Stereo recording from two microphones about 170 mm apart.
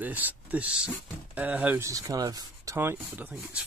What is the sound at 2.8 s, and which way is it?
Speech, 10° right (ahead or behind).